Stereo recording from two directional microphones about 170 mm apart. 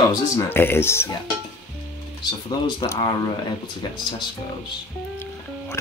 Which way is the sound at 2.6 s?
25° left (ahead or behind).